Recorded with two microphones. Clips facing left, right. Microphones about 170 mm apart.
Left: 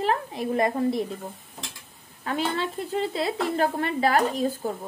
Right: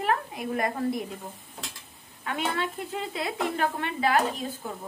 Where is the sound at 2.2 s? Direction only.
35° left (ahead or behind).